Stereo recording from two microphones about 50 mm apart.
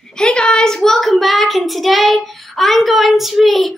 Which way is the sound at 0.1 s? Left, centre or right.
Centre.